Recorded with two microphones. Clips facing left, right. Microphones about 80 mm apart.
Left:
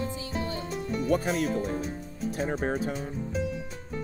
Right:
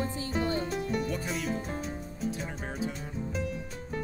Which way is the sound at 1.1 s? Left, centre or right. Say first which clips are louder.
Left 8 dB; left.